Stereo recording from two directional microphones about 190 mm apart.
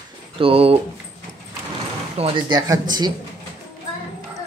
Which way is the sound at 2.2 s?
25° right (ahead or behind).